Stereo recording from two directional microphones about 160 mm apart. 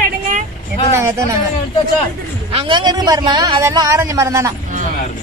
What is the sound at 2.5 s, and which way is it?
A man's voice, 30° right (ahead or behind).